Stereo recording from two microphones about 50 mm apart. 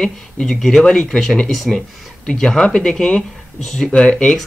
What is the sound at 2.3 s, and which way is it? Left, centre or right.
Speech, centre.